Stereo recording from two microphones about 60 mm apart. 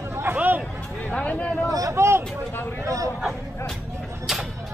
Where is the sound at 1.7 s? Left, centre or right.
Right.